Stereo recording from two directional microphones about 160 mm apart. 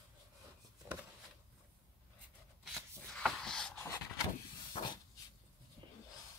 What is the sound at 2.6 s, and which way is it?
Shuffling cards, centre (ahead or behind).